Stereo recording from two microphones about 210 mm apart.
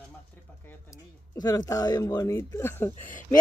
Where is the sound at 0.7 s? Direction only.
15° left (ahead or behind).